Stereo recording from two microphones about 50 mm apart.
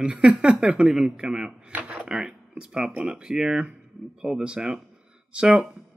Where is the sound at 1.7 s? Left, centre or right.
Right.